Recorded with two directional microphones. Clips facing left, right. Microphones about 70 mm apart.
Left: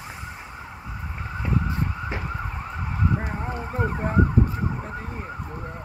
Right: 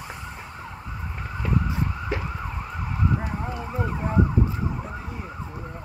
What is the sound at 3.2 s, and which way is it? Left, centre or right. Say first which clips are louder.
Emergency vehicle: even; left.